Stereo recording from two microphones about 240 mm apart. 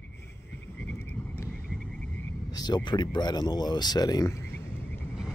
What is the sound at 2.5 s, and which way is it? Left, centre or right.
Speech, centre.